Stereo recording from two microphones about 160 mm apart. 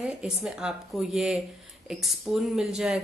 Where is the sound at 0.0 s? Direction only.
5° right (ahead or behind).